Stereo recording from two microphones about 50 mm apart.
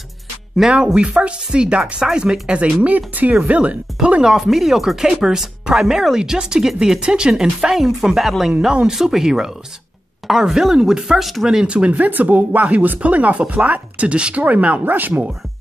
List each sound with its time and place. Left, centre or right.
0.6 s speech: centre
0.9 s speech: right
4.2 s speech: centre
11.4 s speech: centre
11.9 s speech: right